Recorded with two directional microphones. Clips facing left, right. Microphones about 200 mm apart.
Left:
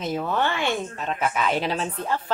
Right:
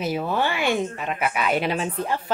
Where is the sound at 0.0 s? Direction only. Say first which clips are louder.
Right 1 dB; 10° right (ahead or behind).